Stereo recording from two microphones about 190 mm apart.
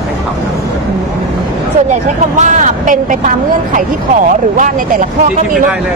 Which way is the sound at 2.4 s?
40° right (ahead or behind).